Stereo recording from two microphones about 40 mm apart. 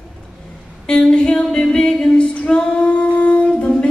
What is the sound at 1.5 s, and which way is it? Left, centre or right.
Female singing, centre.